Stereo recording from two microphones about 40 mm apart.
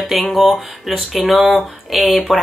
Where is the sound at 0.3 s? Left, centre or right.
Centre.